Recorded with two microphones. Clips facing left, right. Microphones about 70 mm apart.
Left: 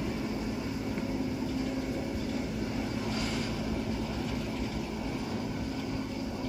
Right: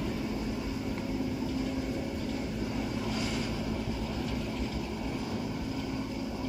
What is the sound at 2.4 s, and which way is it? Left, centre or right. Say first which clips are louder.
Vehicle: even; centre.